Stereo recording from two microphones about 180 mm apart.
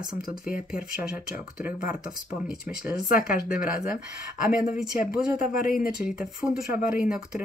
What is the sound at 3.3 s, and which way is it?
Speech, 55° left (ahead or behind).